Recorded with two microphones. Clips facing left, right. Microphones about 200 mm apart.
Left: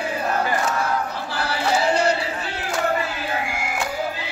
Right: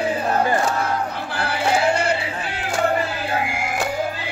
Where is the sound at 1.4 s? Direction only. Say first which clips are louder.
Right 2 dB; 55° right (ahead or behind).